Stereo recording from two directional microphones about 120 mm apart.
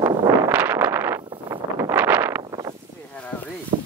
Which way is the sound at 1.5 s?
25° right (ahead or behind).